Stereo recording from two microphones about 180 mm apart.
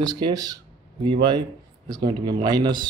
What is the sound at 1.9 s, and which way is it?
Speech, 25° right (ahead or behind).